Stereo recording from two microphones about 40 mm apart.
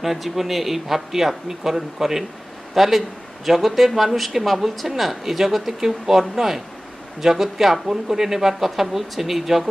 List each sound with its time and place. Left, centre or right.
0.0 s speech: centre